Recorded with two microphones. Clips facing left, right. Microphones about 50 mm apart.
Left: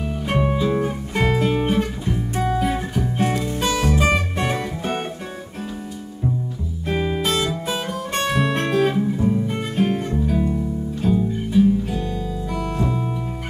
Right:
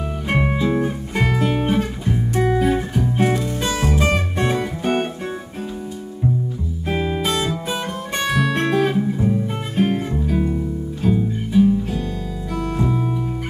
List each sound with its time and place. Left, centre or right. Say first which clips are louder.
0.3 s music: right 1 dB; centre
4.0 s music: even; centre
6.9 s music: even; centre
7.3 s music: even; centre
8.3 s guitar: right 2 dB; centre
8.6 s music: right 1 dB; centre
11.5 s music: right 1 dB; centre
12.7 s music: right 3 dB; centre